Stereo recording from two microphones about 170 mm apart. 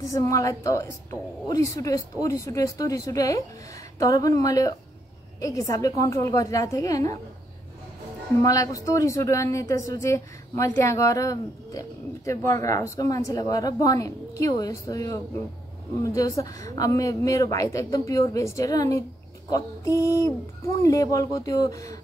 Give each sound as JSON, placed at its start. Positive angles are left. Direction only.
{"t": 0.1, "sound": "a woman's voice", "side_deg": 20}
{"t": 8.4, "sound": "a woman's voice", "side_deg": 20}